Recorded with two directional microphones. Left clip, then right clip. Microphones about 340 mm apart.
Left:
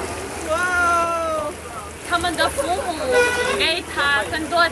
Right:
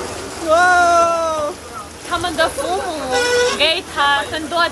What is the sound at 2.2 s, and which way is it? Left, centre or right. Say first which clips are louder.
Speech: right 4 dB; centre.